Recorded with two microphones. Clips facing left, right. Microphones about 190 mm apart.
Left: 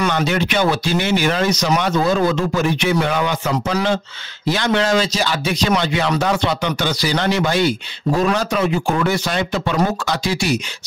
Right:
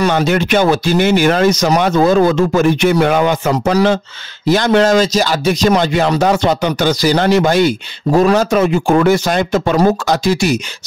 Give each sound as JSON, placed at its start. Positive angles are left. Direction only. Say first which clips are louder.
{"t": 0.0, "sound": "speech", "louder": "right 5 dB", "side_deg": -45}